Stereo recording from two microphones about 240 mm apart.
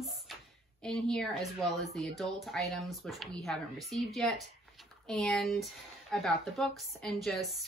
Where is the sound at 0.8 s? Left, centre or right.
Centre.